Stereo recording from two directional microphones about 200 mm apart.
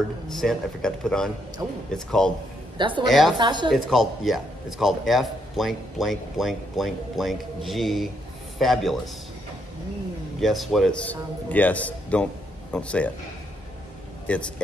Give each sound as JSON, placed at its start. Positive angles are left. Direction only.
{"t": 0.3, "sound": "a man's voice", "side_deg": 0}
{"t": 3.3, "sound": "speech", "side_deg": -20}
{"t": 3.7, "sound": "a man's voice", "side_deg": 0}
{"t": 10.4, "sound": "a man's voice", "side_deg": 0}
{"t": 14.3, "sound": "speech", "side_deg": 5}